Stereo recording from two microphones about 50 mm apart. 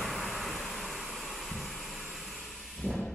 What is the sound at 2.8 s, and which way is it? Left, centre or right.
Vehicle, centre.